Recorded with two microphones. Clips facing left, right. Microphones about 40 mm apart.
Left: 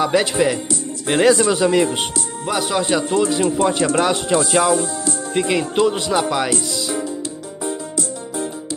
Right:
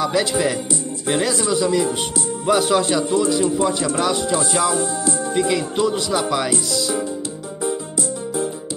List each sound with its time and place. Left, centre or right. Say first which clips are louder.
0.0 s speech: left 2 dB; left
1.1 s speech: left 6 dB; left
2.4 s speech: right 4 dB; centre
2.8 s speech: left 1 dB; centre
3.1 s speech: even; left
3.7 s speech: left 4 dB; left
4.0 s speech: left 2 dB; left
6.2 s speech: left 1 dB; centre